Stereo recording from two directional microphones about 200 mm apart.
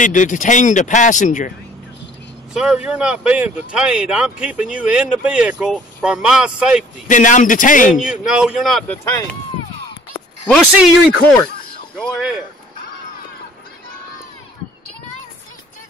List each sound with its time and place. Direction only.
0.0 s speech: 40° left (ahead or behind)
2.5 s speech: 5° right (ahead or behind)
7.1 s speech: 40° left (ahead or behind)
8.0 s speech: 5° right (ahead or behind)
10.5 s speech: centre (ahead or behind)